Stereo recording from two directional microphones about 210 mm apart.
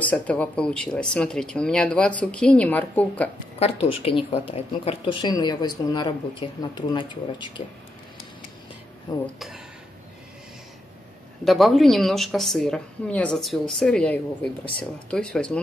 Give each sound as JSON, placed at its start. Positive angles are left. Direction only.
{"t": 0.0, "sound": "a woman's voice", "side_deg": 5}
{"t": 3.5, "sound": "speech", "side_deg": 30}
{"t": 9.2, "sound": "a woman's voice", "side_deg": 0}
{"t": 11.4, "sound": "a woman's voice", "side_deg": 0}